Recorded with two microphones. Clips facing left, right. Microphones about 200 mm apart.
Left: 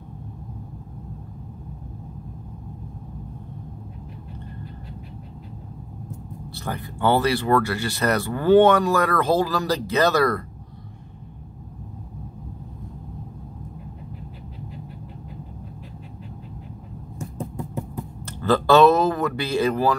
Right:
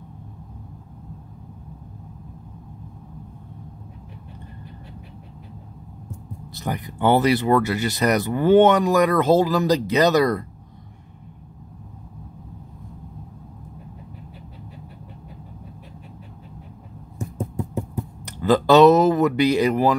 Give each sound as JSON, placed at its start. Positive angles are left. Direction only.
{"t": 6.5, "sound": "speech", "side_deg": -20}
{"t": 18.2, "sound": "speech", "side_deg": -15}